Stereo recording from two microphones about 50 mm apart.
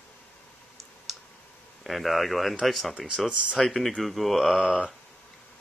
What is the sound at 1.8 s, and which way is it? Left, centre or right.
Speech, centre.